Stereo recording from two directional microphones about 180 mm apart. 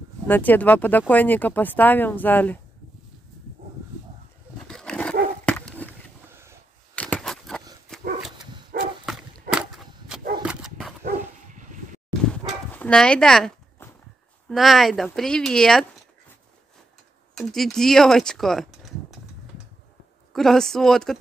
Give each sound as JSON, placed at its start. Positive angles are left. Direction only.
{"t": 0.3, "sound": "speech", "side_deg": 10}
{"t": 4.6, "sound": "a sound", "side_deg": 5}
{"t": 6.2, "sound": "wild animals", "side_deg": -15}
{"t": 7.0, "sound": "a sound", "side_deg": 5}
{"t": 9.0, "sound": "a sound", "side_deg": -5}
{"t": 11.1, "sound": "dog", "side_deg": -45}
{"t": 12.3, "sound": "dog", "side_deg": 5}
{"t": 14.5, "sound": "speech", "side_deg": 0}
{"t": 17.4, "sound": "speech", "side_deg": 0}
{"t": 20.3, "sound": "speech", "side_deg": 0}